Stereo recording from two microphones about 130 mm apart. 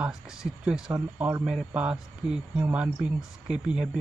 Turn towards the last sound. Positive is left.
turn(degrees=-5)  # may be behind; listen again after turning